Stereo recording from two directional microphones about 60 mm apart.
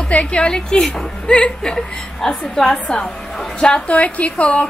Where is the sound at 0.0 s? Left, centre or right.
Centre.